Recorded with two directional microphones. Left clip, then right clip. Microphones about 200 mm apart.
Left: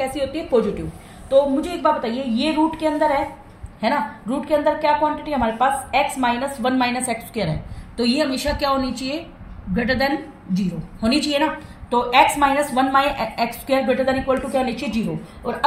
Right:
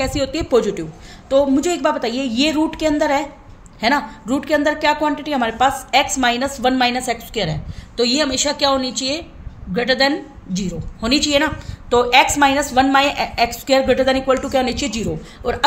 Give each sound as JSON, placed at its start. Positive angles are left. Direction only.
{"t": 0.0, "sound": "a woman's voice", "side_deg": -55}